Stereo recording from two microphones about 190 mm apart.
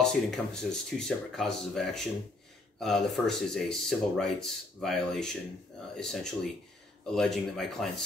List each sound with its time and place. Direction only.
0.0 s speech: 5° left (ahead or behind)